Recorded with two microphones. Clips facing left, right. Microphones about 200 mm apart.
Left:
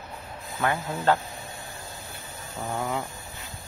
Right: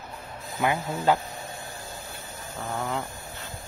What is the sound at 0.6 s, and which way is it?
Speech, 15° right (ahead or behind).